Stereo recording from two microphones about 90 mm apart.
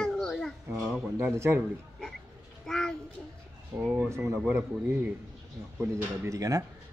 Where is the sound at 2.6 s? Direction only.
5° left (ahead or behind).